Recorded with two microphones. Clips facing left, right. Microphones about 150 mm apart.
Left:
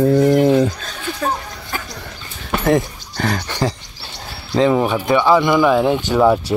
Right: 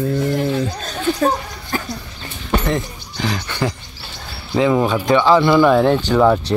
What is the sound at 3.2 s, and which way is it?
Speech, 45° left (ahead or behind).